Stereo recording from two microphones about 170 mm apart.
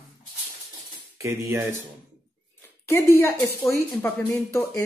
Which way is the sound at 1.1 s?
15° right (ahead or behind).